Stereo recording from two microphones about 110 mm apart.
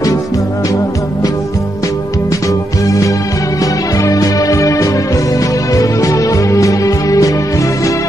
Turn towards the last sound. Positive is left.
turn(degrees=30)  # may be behind; listen again after turning